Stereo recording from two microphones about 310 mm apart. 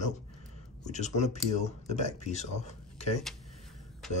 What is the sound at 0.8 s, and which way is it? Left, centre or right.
Speech, left.